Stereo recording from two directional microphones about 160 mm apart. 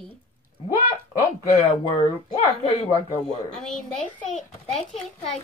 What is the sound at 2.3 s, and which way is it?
Speech, 45° left (ahead or behind).